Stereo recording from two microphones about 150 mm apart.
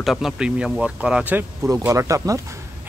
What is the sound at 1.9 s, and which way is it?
Speech, 20° right (ahead or behind).